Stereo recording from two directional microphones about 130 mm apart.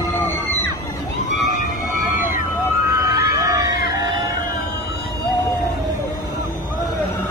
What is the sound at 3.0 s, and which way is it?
Emergency vehicle, 25° right (ahead or behind).